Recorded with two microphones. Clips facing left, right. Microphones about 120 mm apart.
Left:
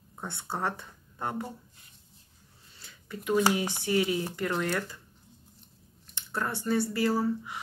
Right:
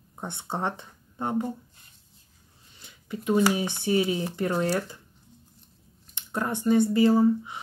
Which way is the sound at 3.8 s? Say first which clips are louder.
Right 3 dB; 25° right (ahead or behind).